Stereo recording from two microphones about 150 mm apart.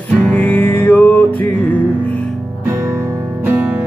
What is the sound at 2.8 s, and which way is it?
Music, 20° right (ahead or behind).